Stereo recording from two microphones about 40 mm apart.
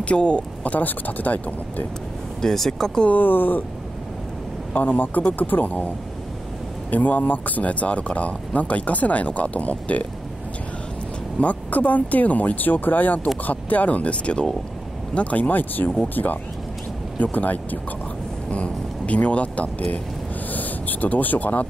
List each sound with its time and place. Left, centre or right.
0.0 s speech: left
0.7 s speech: left
2.4 s speech: centre
3.1 s speech: left
4.7 s speech: left
6.9 s speech: left
11.3 s speech: left
17.2 s speech: left
18.5 s speech: left